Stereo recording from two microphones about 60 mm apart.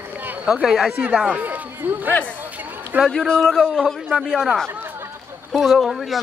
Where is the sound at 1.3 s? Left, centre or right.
Right.